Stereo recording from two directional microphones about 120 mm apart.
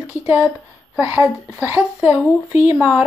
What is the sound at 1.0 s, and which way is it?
A woman's voice, 25° right (ahead or behind).